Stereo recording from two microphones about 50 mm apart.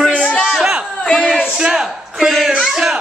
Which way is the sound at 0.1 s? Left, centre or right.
Left.